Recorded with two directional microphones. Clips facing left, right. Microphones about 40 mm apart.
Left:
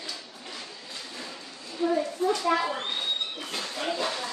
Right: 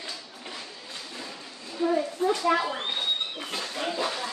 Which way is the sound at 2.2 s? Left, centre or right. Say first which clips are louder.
Right 1 dB; right.